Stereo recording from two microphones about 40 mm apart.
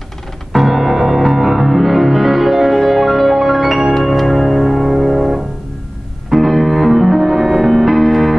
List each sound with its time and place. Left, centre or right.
0.5 s music: centre
6.3 s music: centre